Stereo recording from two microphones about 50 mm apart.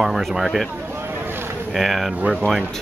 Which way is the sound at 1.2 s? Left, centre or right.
Right.